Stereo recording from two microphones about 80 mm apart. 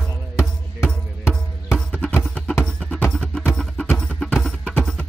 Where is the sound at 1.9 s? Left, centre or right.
Centre.